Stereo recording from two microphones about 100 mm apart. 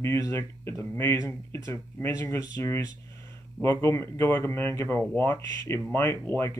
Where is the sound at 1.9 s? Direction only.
25° left (ahead or behind).